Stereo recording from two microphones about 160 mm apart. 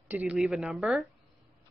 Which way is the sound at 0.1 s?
10° right (ahead or behind).